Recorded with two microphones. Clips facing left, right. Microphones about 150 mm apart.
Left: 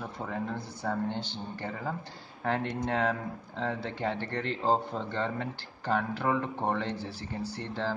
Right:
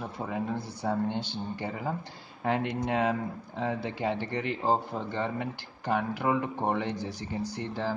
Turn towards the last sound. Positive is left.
turn(degrees=-10)  # may be behind; listen again after turning